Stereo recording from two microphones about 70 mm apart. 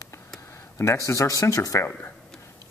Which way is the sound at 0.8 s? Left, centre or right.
Left.